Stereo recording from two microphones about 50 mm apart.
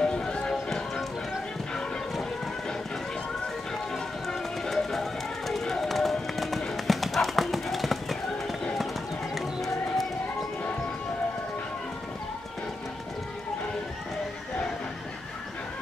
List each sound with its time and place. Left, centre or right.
0.0 s music: centre
3.9 s run: centre
5.5 s clip-clop: centre
9.3 s bird: centre